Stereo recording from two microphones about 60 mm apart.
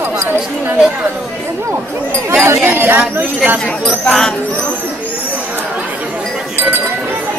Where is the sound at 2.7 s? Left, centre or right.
Right.